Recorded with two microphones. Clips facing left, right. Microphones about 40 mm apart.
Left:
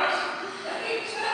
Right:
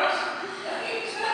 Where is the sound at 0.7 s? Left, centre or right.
Centre.